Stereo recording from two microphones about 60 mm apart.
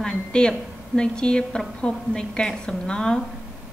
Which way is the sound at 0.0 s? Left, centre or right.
Centre.